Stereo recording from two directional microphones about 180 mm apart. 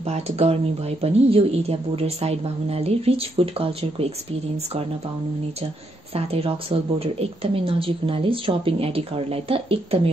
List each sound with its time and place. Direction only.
0.0 s speech: 35° right (ahead or behind)
6.1 s speech: 35° right (ahead or behind)